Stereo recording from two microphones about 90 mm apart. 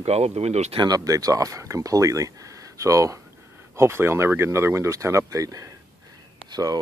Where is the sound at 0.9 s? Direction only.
40° right (ahead or behind).